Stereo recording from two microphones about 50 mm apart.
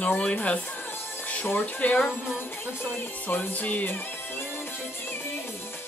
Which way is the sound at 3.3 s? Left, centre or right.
Left.